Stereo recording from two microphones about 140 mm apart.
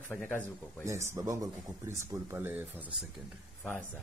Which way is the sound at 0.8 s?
20° right (ahead or behind).